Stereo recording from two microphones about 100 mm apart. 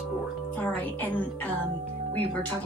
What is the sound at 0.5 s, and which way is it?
Speech, 20° left (ahead or behind).